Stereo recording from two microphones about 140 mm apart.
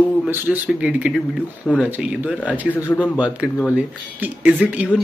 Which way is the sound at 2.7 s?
15° left (ahead or behind).